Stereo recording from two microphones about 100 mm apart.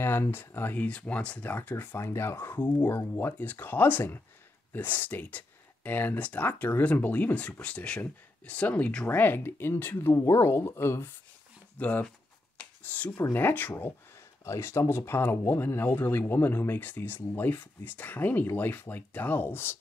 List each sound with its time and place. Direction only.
0.0 s speech: 25° left (ahead or behind)
12.5 s a sound: 15° left (ahead or behind)
13.2 s speech: 20° left (ahead or behind)